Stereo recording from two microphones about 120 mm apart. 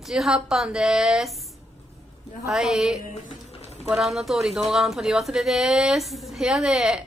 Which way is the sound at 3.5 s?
60° left (ahead or behind).